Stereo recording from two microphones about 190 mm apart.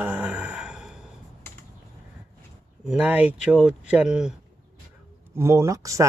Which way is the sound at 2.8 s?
5° right (ahead or behind).